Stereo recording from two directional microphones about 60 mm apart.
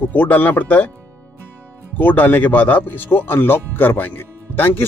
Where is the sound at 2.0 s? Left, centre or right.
Left.